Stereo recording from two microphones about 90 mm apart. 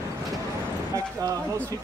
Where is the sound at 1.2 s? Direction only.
40° right (ahead or behind).